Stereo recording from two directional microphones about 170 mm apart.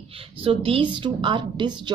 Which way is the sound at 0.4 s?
35° right (ahead or behind).